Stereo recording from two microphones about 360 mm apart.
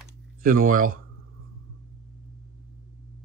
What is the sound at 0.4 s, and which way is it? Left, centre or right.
Speech, right.